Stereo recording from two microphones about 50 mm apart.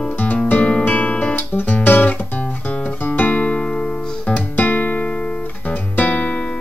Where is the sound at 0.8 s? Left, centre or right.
Left.